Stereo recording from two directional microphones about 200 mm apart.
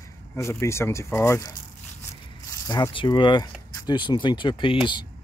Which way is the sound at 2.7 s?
20° left (ahead or behind).